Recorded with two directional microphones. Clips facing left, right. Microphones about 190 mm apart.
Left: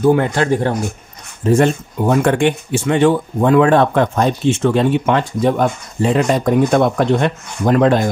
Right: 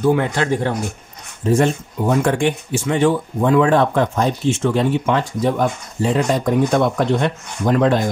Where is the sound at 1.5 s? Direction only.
60° left (ahead or behind).